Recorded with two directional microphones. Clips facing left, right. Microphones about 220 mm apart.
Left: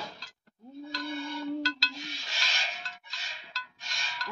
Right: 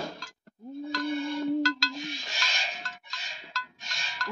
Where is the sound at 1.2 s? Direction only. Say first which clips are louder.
Right 6 dB; 20° right (ahead or behind).